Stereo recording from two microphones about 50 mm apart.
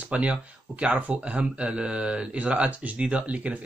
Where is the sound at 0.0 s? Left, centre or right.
Right.